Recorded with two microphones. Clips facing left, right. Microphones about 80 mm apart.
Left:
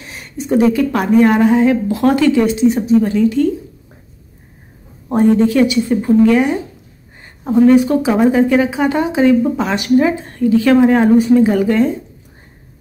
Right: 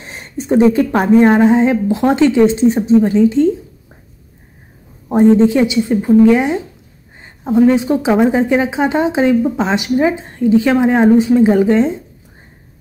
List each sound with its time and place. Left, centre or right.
0.0 s a woman's voice: right
5.1 s a woman's voice: right